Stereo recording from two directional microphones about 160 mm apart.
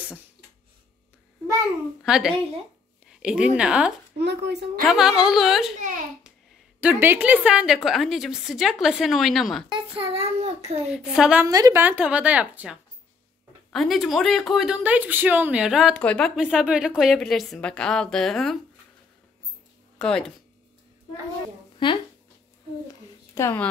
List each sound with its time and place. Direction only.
2.0 s a woman's voice: 5° right (ahead or behind)
4.2 s a child's voice: 90° right
4.8 s a woman's voice: 5° right (ahead or behind)
6.8 s a woman's voice: 10° right (ahead or behind)
9.7 s a child's voice: 35° right (ahead or behind)
10.9 s a woman's voice: 5° right (ahead or behind)
11.4 s a woman's voice: 20° right (ahead or behind)
11.8 s a woman's voice: 10° right (ahead or behind); by 16.3 s 5° left (ahead or behind)
16.3 s a woman's voice: 5° right (ahead or behind)
20.0 s a woman's voice: 5° left (ahead or behind)
21.7 s speech: 30° left (ahead or behind)
23.3 s speech: 15° left (ahead or behind)